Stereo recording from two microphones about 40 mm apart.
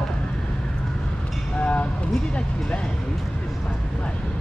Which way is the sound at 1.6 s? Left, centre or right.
Left.